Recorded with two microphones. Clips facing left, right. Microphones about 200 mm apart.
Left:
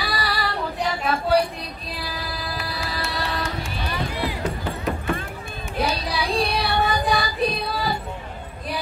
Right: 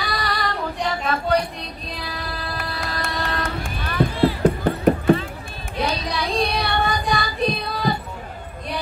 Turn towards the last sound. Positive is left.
turn(degrees=5)  # may be behind; listen again after turning